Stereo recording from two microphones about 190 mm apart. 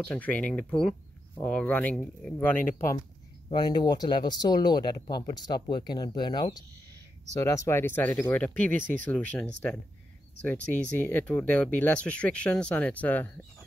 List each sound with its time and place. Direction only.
0.0 s speech: 5° left (ahead or behind)
3.4 s speech: 20° left (ahead or behind)